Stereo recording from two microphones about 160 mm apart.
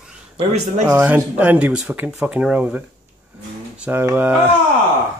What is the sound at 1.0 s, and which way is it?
Speech, 10° right (ahead or behind).